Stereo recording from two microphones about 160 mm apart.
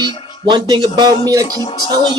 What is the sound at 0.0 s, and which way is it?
Speech, 25° right (ahead or behind).